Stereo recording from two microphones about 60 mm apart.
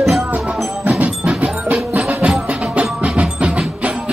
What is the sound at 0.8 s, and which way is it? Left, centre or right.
Music, right.